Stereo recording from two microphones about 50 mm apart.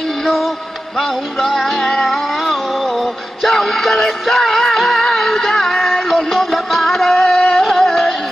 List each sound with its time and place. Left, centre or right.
1.4 s music: centre
7.3 s music: left
7.7 s music: centre